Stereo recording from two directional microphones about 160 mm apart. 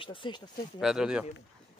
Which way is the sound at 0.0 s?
30° left (ahead or behind).